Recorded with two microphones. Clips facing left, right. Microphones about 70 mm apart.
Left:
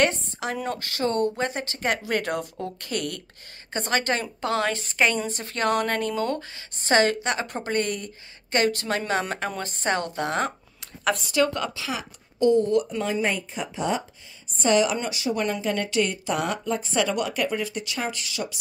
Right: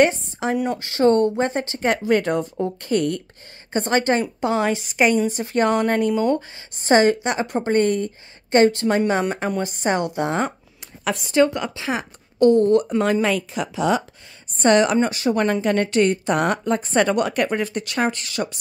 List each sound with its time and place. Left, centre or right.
0.0 s a woman's voice: right
1.0 s a woman's voice: right
13.0 s speech: right
14.6 s a woman's voice: right